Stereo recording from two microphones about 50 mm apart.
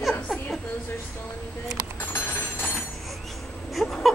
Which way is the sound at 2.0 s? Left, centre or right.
Left.